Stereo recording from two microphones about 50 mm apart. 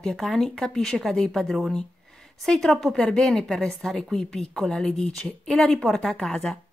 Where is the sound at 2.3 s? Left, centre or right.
Centre.